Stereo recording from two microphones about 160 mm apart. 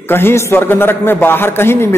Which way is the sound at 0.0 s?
15° left (ahead or behind).